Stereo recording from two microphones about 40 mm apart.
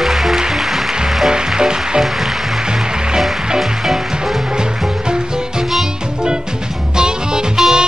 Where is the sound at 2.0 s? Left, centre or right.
Centre.